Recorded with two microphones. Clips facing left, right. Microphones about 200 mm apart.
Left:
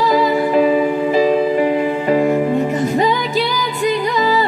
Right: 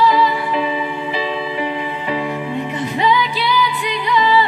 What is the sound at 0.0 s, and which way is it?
Music, 45° left (ahead or behind).